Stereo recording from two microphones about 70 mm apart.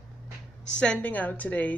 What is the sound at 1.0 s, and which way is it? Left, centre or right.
Speech, left.